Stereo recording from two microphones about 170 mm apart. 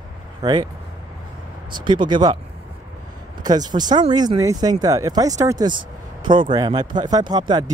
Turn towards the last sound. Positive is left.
turn(degrees=-25)  # may be behind; listen again after turning